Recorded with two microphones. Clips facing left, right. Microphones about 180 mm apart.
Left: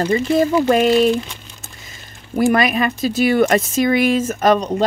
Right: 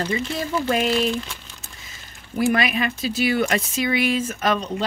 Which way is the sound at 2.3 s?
45° left (ahead or behind).